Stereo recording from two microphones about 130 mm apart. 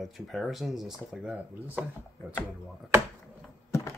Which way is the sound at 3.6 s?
25° left (ahead or behind).